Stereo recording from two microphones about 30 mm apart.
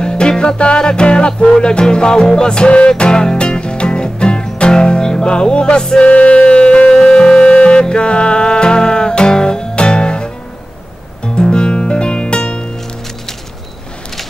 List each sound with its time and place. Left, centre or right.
0.0 s music: left
5.9 s music: left
6.9 s music: left